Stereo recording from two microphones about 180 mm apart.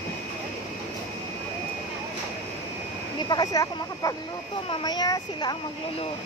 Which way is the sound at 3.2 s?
20° left (ahead or behind).